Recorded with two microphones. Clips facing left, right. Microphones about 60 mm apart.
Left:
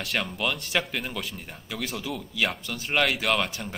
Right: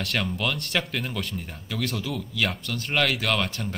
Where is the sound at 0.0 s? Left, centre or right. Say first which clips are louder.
Right 1 dB; centre.